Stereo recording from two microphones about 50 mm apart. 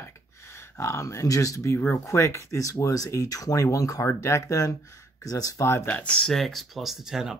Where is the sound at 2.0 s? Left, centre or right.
Left.